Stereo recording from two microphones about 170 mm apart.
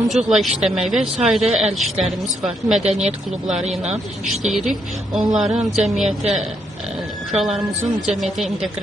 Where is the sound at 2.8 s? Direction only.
40° right (ahead or behind).